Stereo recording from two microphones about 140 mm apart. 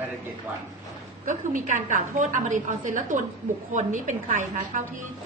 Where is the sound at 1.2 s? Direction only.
65° right (ahead or behind).